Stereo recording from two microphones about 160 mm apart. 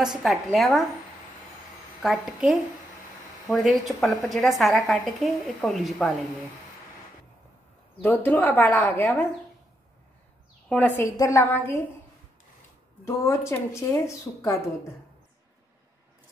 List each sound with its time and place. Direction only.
0.2 s a woman's voice: centre (ahead or behind)
2.0 s a woman's voice: 5° right (ahead or behind)
8.0 s speech: 15° left (ahead or behind)
10.7 s speech: 10° left (ahead or behind)
13.0 s speech: 15° left (ahead or behind)